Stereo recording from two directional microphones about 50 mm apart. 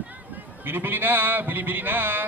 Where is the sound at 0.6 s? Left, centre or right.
Right.